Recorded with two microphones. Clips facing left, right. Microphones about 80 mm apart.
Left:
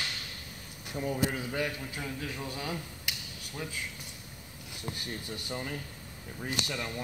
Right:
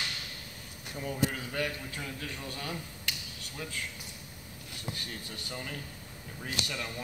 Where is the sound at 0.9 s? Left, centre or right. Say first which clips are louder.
Left 2 dB; centre.